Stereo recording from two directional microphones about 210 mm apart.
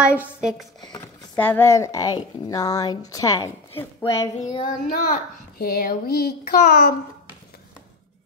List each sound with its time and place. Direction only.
0.0 s speech: 5° right (ahead or behind)
0.9 s speech: 15° left (ahead or behind)
4.4 s child singing: 25° left (ahead or behind)
5.1 s a child's voice: 45° left (ahead or behind)